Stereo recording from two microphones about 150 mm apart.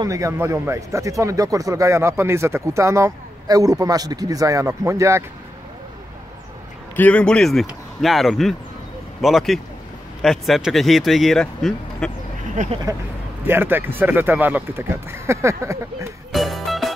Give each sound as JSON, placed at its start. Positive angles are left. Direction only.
{"t": 0.0, "sound": "speech", "side_deg": -20}
{"t": 7.0, "sound": "speech", "side_deg": 10}
{"t": 12.9, "sound": "speech", "side_deg": -20}
{"t": 16.3, "sound": "music", "side_deg": 0}